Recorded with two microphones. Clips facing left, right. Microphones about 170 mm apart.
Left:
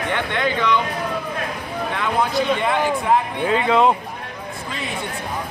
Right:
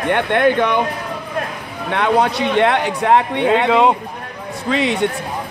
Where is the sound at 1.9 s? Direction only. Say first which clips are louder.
Right 7 dB; 65° right (ahead or behind).